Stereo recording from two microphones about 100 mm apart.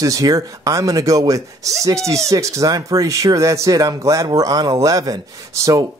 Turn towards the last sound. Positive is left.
turn(degrees=-35)  # may be behind; listen again after turning